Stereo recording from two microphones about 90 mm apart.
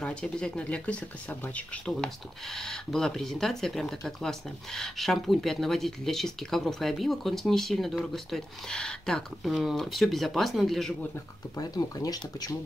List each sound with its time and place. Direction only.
0.0 s speech: 10° left (ahead or behind)
11.5 s speech: 45° left (ahead or behind)